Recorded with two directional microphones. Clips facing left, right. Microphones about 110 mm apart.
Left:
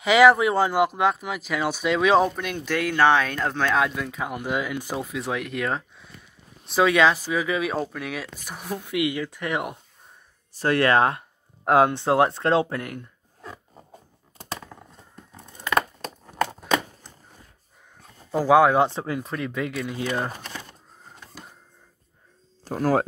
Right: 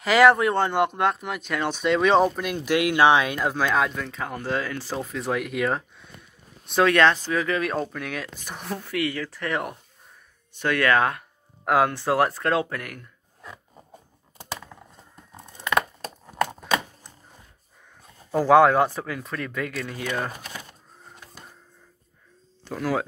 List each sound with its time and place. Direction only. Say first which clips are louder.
0.0 s speech: left 1 dB; centre (ahead or behind)
5.0 s speech: right 1 dB; centre (ahead or behind)
10.5 s speech: left 2 dB; 35° left (ahead or behind)
18.3 s speech: right 1 dB; 10° left (ahead or behind)
18.8 s speech: left 1 dB; 25° left (ahead or behind)
20.3 s a sound: left 1 dB; 10° right (ahead or behind)
22.7 s speech: left 4 dB; 40° left (ahead or behind)